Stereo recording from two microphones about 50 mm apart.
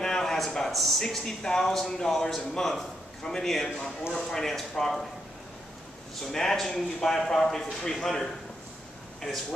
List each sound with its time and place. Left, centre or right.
0.0 s a sound: centre
0.7 s speech: centre
6.3 s speech: centre